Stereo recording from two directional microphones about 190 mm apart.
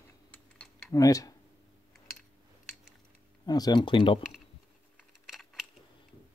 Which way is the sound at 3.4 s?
20° left (ahead or behind).